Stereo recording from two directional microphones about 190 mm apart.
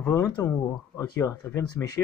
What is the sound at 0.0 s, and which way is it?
Speech, 10° left (ahead or behind).